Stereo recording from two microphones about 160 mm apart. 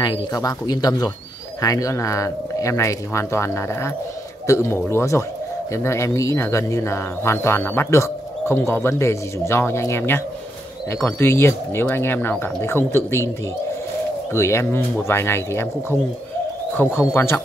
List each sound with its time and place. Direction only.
0.0 s speech: 25° left (ahead or behind)
14.3 s speech: 15° left (ahead or behind)
16.7 s speech: 15° left (ahead or behind)